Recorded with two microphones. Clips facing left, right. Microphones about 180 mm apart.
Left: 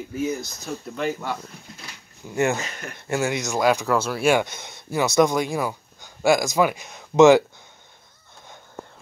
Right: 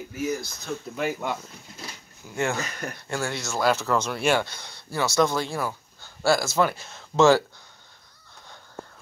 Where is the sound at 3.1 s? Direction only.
20° left (ahead or behind).